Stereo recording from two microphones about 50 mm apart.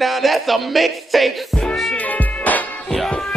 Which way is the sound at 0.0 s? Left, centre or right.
Centre.